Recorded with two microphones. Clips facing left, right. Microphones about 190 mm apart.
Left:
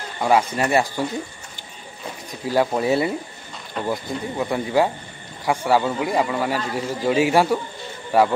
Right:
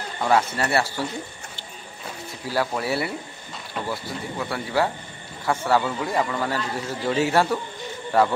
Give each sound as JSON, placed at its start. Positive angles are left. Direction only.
{"t": 0.2, "sound": "a man's voice", "side_deg": 10}
{"t": 2.4, "sound": "a man's voice", "side_deg": 20}